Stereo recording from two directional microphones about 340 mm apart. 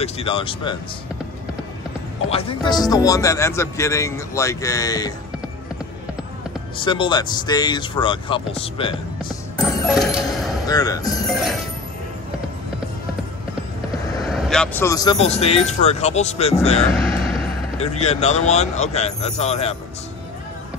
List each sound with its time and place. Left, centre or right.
0.0 s speech: centre
2.3 s speech: centre
6.8 s speech: centre
9.6 s a sound: centre
10.7 s speech: centre
14.3 s speech: centre
16.9 s vehicle: centre
17.7 s speech: centre